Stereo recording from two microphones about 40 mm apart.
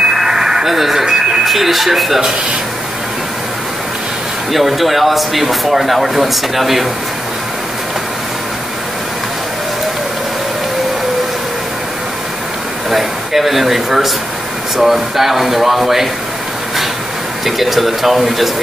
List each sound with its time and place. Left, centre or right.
0.0 s radio: centre
1.0 s a sound: centre
1.4 s speech: centre
4.5 s speech: centre
12.9 s speech: centre
17.5 s speech: centre